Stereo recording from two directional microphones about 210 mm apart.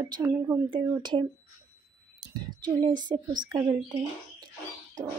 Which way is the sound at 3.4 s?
15° right (ahead or behind).